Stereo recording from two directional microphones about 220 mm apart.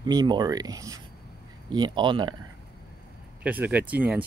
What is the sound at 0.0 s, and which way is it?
Speech, 20° right (ahead or behind).